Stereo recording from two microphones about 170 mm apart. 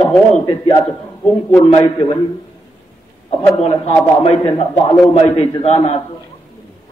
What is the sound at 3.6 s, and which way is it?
A man's voice, 35° left (ahead or behind).